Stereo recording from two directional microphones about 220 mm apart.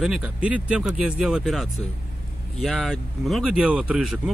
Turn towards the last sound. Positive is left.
turn(degrees=-5)  # may be behind; listen again after turning